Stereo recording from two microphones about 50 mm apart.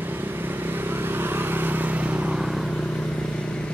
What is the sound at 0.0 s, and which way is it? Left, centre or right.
Vehicle, right.